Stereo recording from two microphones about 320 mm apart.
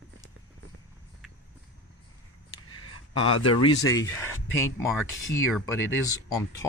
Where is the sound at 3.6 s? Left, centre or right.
Centre.